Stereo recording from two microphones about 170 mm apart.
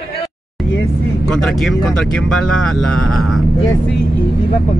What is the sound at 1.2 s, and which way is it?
Speech, centre (ahead or behind).